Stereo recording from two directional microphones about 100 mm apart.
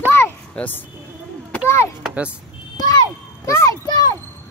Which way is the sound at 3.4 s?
30° left (ahead or behind).